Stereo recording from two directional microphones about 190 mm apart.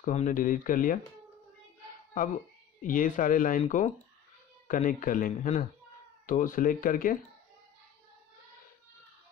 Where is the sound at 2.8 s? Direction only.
45° left (ahead or behind).